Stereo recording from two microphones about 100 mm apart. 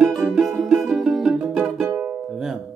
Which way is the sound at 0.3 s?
Centre (ahead or behind).